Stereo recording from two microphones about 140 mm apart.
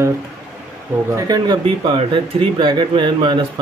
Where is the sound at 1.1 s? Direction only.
30° right (ahead or behind).